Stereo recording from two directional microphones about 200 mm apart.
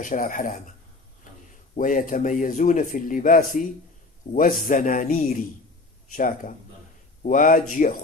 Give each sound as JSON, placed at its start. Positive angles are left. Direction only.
{"t": 0.0, "sound": "a man's voice", "side_deg": 40}
{"t": 1.8, "sound": "a man's voice", "side_deg": 40}